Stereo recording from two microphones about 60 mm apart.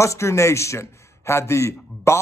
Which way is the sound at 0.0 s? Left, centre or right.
Left.